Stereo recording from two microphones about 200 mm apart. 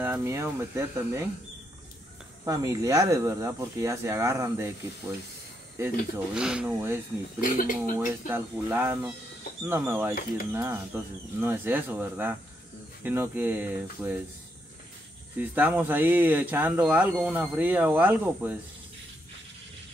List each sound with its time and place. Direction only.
0.0 s speech: 10° right (ahead or behind)
2.4 s speech: 15° right (ahead or behind)
6.1 s speech: 5° right (ahead or behind)
7.3 s speech: 45° left (ahead or behind)
8.3 s speech: 10° right (ahead or behind)
15.3 s speech: 10° right (ahead or behind)